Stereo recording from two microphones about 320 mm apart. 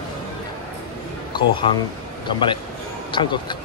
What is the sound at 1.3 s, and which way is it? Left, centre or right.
Speech, centre.